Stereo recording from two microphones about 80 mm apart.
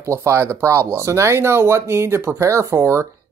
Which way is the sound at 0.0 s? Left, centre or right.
Right.